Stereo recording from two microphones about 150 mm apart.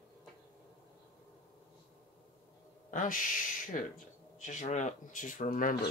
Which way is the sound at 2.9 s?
60° left (ahead or behind).